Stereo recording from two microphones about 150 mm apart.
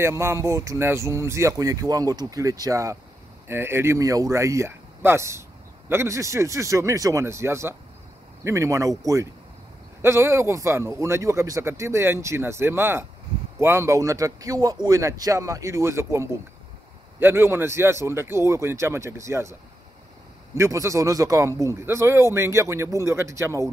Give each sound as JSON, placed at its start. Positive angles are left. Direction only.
{"t": 0.0, "sound": "a man's voice", "side_deg": -15}
{"t": 20.5, "sound": "speech", "side_deg": -20}